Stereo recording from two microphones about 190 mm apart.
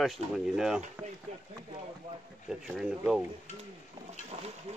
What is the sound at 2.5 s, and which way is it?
Speech, centre (ahead or behind).